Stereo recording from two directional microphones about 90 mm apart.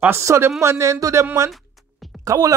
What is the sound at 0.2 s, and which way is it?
Speech, 35° right (ahead or behind).